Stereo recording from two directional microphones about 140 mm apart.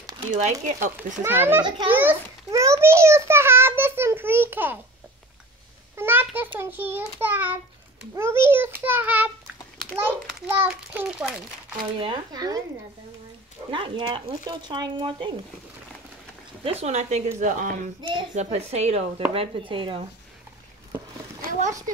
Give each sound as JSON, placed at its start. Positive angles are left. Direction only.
{"t": 0.4, "sound": "speech", "side_deg": -60}
{"t": 1.2, "sound": "a child's voice", "side_deg": -15}
{"t": 5.9, "sound": "a sound", "side_deg": -15}
{"t": 6.6, "sound": "a child's voice", "side_deg": -15}
{"t": 11.8, "sound": "speech", "side_deg": -35}
{"t": 13.7, "sound": "speech", "side_deg": -35}
{"t": 16.8, "sound": "a woman's voice", "side_deg": -55}
{"t": 21.5, "sound": "a child's voice", "side_deg": -65}